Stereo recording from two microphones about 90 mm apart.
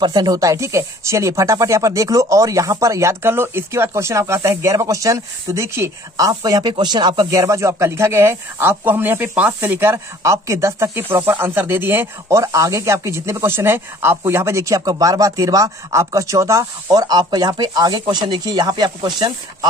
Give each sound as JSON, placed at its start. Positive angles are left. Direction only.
{"t": 0.0, "sound": "speech", "side_deg": -50}
{"t": 6.7, "sound": "speech", "side_deg": -55}